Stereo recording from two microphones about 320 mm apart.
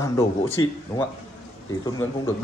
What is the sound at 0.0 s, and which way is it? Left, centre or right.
A man's voice, centre.